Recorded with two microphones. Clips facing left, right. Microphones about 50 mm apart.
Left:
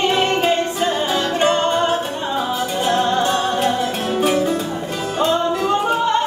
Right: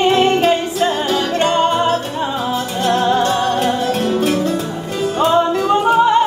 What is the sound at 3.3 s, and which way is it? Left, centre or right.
Music, centre.